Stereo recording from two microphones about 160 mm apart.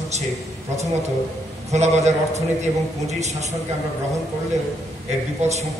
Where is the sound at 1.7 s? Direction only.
45° right (ahead or behind).